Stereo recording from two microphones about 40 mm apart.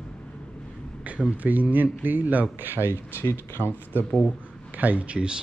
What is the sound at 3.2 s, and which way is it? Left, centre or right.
Speech, left.